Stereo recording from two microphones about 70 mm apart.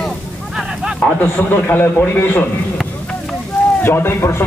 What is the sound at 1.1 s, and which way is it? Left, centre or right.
A man's voice, left.